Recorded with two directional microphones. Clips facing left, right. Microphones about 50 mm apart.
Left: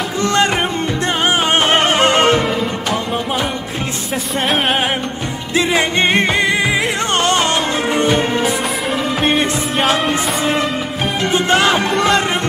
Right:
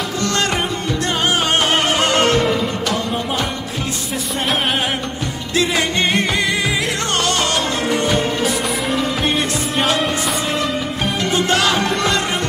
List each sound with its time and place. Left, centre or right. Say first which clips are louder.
0.2 s music: left 5 dB; left
5.5 s music: left 3 dB; left
11.3 s music: left 3 dB; left
11.9 s music: left 4 dB; centre